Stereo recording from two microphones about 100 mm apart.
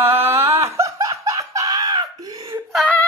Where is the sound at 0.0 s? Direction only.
25° right (ahead or behind); by 2.0 s 40° right (ahead or behind).